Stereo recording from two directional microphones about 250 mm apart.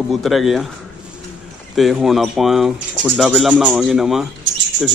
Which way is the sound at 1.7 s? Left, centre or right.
Centre.